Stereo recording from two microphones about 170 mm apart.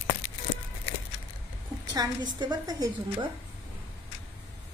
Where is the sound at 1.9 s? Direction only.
25° right (ahead or behind).